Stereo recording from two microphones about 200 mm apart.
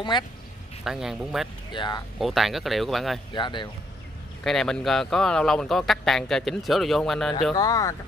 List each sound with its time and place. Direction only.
0.1 s speech: 25° left (ahead or behind)
0.8 s speech: centre (ahead or behind)
1.7 s speech: 20° left (ahead or behind)
2.1 s speech: centre (ahead or behind)
3.3 s speech: 20° left (ahead or behind)
4.5 s speech: centre (ahead or behind)
7.5 s speech: 15° left (ahead or behind)